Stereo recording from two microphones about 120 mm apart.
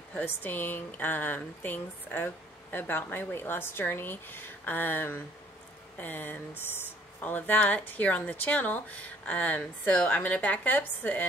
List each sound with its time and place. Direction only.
0.1 s speech: 15° left (ahead or behind)